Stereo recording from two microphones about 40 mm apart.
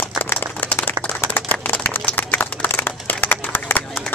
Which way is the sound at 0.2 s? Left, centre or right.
Left.